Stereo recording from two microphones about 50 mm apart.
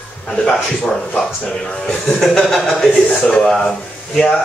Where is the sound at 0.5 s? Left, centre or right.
Centre.